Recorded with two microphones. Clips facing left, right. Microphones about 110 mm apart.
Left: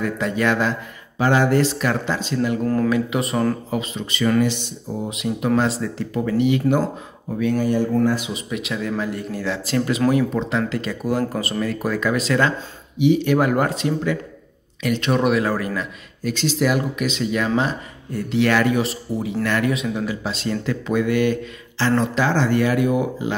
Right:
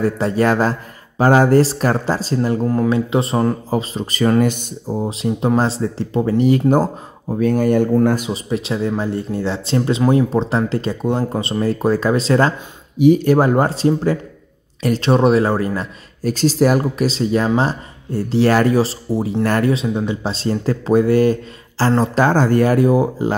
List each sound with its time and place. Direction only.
0.0 s speech: 35° right (ahead or behind)
2.6 s speech: 20° right (ahead or behind); by 8.3 s 50° right (ahead or behind)
8.3 s speech: 35° right (ahead or behind)